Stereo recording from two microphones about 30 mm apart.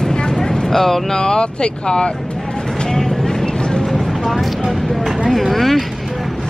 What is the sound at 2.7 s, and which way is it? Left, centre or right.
Vehicle, centre.